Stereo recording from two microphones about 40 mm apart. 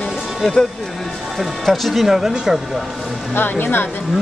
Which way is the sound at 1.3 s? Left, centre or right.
Centre.